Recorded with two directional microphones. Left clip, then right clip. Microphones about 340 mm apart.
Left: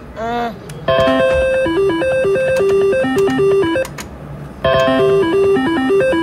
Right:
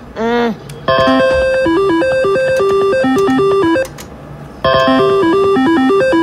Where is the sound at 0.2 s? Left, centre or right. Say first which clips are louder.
Right 5 dB; right.